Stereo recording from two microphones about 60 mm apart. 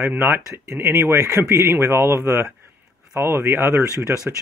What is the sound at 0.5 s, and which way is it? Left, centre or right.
Speech, right.